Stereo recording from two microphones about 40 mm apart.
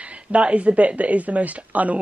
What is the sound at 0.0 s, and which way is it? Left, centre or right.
Speech, right.